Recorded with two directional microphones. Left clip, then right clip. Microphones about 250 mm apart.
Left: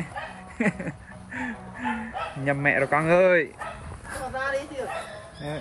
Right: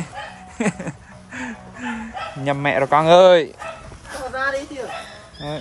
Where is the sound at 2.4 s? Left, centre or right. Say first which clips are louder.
Right 4 dB; centre.